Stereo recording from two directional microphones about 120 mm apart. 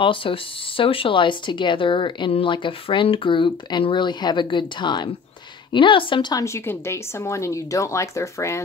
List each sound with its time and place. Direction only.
0.0 s speech: 45° left (ahead or behind)
6.3 s speech: 25° left (ahead or behind)